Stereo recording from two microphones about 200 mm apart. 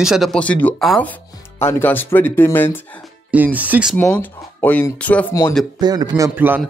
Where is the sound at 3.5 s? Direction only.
10° right (ahead or behind).